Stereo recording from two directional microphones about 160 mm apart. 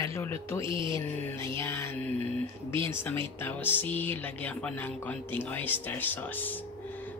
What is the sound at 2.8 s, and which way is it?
Speech, 15° left (ahead or behind).